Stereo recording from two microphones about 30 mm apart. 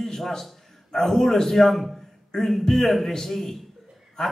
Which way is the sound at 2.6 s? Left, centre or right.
Centre.